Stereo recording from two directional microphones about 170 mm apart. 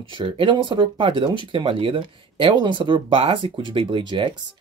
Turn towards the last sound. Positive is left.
turn(degrees=-30)  # may be behind; listen again after turning